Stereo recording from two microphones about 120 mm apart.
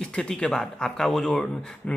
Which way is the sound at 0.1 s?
5° left (ahead or behind).